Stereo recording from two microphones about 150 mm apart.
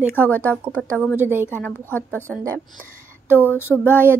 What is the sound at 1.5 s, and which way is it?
Speech, 15° left (ahead or behind).